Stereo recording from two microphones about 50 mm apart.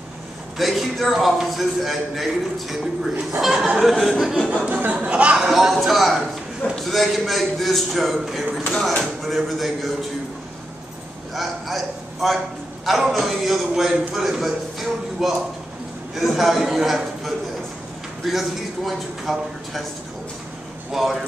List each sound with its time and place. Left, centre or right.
0.6 s a man's voice: centre
4.6 s speech: right
5.4 s a man's voice: centre
11.3 s a man's voice: centre
20.9 s a man's voice: centre